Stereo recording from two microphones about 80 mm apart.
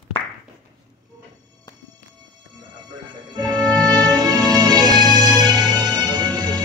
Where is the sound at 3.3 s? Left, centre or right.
Right.